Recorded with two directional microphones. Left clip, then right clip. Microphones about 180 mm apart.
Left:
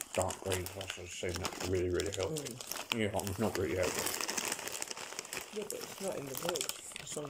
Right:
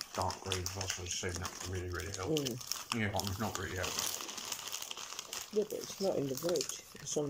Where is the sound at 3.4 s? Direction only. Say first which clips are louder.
Left 5 dB; 25° left (ahead or behind).